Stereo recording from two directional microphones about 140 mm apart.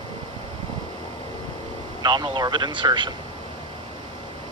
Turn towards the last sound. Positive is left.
turn(degrees=-35)  # may be behind; listen again after turning